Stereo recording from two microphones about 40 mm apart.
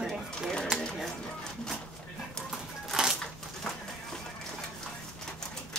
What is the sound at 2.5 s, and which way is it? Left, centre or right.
Music, centre.